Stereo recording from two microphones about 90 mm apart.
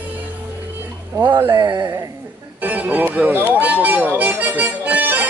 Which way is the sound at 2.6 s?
20° right (ahead or behind).